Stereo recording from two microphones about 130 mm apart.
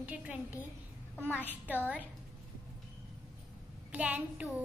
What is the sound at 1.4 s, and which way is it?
Speech, 10° right (ahead or behind).